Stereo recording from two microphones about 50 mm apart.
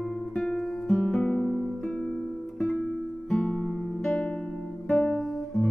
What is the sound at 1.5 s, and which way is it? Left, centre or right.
Music, centre.